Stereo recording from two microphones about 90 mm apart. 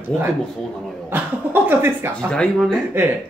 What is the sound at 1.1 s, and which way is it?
Speech, 25° right (ahead or behind).